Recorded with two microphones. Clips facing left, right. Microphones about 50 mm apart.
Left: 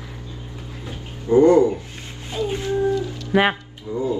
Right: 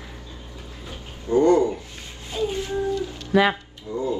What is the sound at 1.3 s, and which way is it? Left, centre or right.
Speech, left.